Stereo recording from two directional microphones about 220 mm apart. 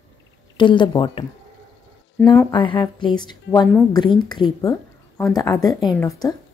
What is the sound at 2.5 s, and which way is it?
A woman's voice, 20° left (ahead or behind).